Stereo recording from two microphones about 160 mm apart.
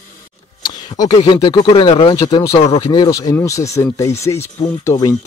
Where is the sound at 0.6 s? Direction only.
25° left (ahead or behind).